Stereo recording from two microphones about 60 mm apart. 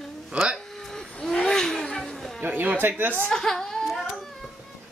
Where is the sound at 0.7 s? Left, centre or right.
Centre.